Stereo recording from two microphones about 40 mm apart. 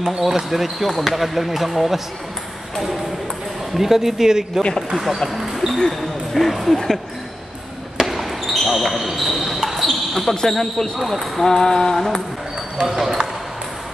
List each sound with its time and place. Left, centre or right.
0.0 s speech: centre
3.7 s speech: centre
4.9 s speech: centre
5.3 s basketball bounce: centre
5.9 s speech: centre
8.0 s basketball bounce: centre
10.3 s mantra: centre
11.0 s speech: centre
11.4 s mantra: centre
12.9 s speech: centre